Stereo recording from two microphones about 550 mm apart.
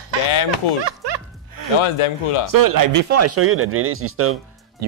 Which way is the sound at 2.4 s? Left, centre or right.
Right.